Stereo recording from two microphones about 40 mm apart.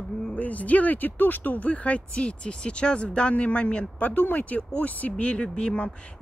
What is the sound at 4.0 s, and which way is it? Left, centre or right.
Speech, left.